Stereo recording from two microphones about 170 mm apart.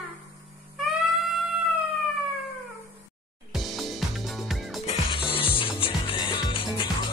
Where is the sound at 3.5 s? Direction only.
Centre (ahead or behind).